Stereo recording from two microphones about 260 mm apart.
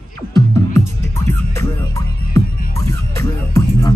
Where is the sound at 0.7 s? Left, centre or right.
Centre.